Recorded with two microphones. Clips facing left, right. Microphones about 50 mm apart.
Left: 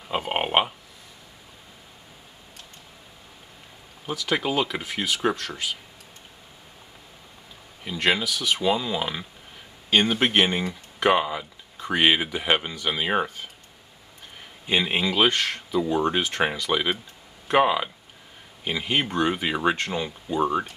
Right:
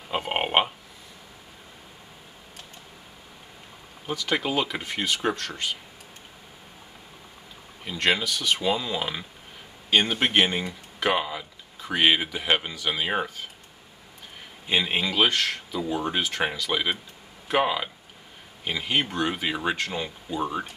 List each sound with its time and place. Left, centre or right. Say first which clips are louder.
0.1 s speech: left 1 dB; centre
4.0 s speech: left 1 dB; centre
7.8 s speech: left 1 dB; centre
14.7 s speech: left 2 dB; centre
20.2 s speech: left 6 dB; centre